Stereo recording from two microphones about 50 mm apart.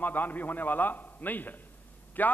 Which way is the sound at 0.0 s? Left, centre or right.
Left.